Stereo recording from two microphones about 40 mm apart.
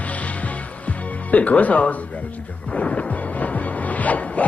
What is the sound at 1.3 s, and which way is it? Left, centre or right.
Speech, left.